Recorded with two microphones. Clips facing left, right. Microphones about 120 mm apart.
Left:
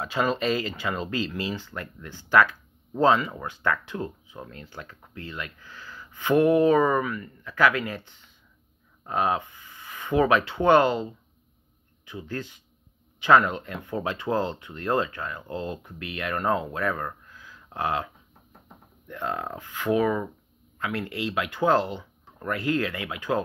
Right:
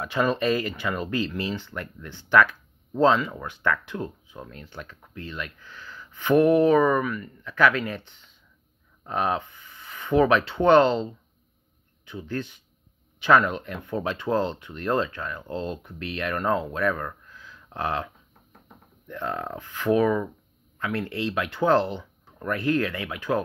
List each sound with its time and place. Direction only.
0.0 s speech: 20° left (ahead or behind)
9.0 s speech: 20° left (ahead or behind)